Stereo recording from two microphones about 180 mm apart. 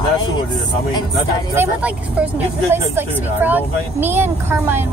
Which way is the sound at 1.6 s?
5° right (ahead or behind).